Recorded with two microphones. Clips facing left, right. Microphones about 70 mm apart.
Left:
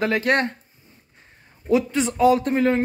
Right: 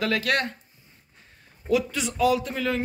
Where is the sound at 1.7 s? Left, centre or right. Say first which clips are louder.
Left 4 dB; left.